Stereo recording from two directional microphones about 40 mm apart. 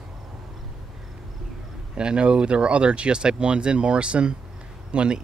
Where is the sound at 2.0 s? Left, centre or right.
Right.